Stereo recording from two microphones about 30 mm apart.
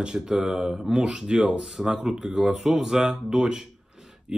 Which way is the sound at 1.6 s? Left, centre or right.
Centre.